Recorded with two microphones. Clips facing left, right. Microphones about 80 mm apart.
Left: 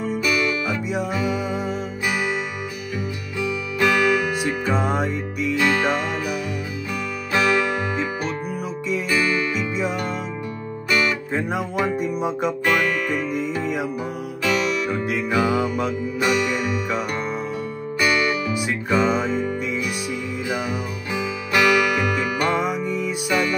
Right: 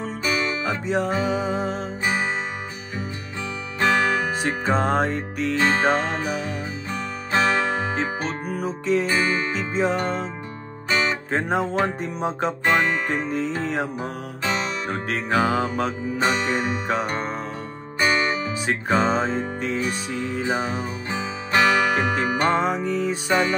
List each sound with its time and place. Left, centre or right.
0.0 s music: right
3.3 s music: right
12.1 s music: centre
12.4 s music: right